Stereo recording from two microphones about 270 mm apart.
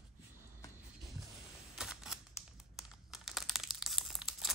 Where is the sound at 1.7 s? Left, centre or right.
Centre.